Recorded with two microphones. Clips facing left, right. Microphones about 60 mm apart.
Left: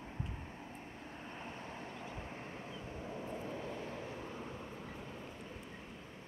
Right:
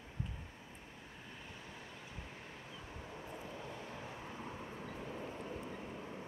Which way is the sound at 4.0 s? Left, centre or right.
Centre.